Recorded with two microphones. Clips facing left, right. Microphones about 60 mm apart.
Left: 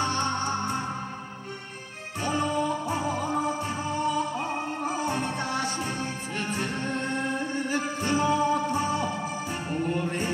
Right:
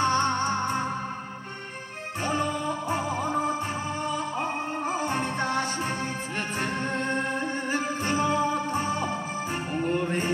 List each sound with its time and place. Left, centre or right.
0.0 s music: right
2.9 s music: right